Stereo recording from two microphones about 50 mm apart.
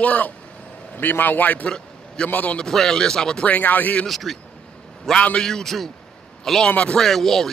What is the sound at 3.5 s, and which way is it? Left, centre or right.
Speech, left.